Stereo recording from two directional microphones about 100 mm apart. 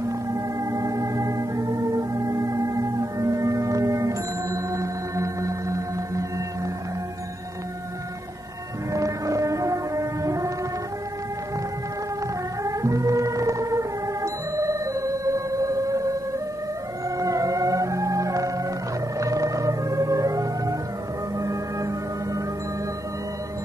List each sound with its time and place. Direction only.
0.0 s music: 30° right (ahead or behind)
8.9 s music: 35° right (ahead or behind)
12.6 s music: 35° right (ahead or behind)
17.2 s music: 35° right (ahead or behind)